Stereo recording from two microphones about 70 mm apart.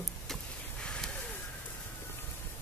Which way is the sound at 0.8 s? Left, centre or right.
Centre.